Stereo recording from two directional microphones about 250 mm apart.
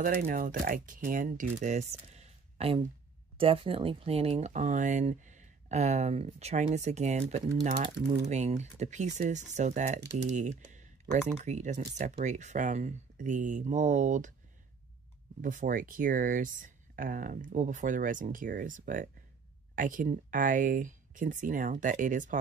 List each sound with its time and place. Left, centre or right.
0.0 s speech: right
15.4 s speech: right